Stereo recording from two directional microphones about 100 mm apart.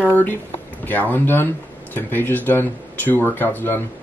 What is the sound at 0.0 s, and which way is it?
Speech, 15° left (ahead or behind).